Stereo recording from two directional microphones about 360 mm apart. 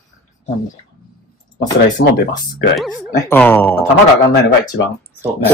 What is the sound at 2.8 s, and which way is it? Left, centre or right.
A man's voice, centre.